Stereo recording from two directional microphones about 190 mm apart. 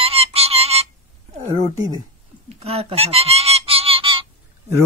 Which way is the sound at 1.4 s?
35° right (ahead or behind).